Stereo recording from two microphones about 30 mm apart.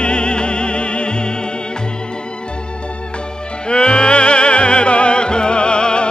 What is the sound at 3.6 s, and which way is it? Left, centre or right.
Music, left.